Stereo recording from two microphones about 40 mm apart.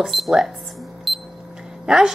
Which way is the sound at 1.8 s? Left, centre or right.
Centre.